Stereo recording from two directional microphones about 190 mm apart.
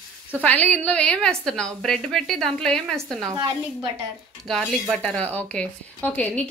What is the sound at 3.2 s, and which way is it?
Speech, 20° right (ahead or behind).